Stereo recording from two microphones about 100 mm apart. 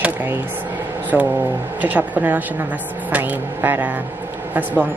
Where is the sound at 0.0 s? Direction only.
20° right (ahead or behind).